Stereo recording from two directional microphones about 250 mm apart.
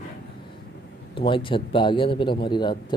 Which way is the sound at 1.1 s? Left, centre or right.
Centre.